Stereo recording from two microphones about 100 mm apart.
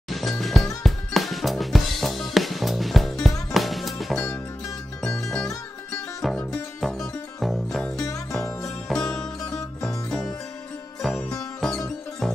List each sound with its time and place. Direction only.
0.1 s music: centre (ahead or behind)
0.8 s drum kit: centre (ahead or behind)
3.5 s music: centre (ahead or behind)
4.2 s music: 30° left (ahead or behind)
5.0 s music: 5° left (ahead or behind)
9.4 s music: 35° left (ahead or behind)
10.0 s music: 5° left (ahead or behind)